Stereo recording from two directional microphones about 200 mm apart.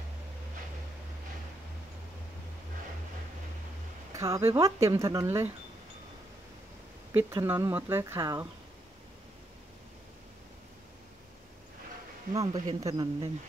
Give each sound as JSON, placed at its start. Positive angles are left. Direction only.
{"t": 4.1, "sound": "speech", "side_deg": -15}
{"t": 7.2, "sound": "speech", "side_deg": -10}
{"t": 12.3, "sound": "speech", "side_deg": -20}